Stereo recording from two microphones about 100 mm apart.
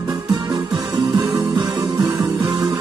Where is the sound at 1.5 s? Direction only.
50° right (ahead or behind).